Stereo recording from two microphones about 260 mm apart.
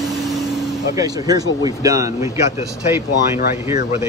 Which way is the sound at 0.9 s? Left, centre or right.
Centre.